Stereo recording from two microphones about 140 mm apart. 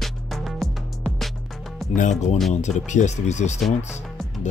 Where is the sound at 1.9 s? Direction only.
60° left (ahead or behind).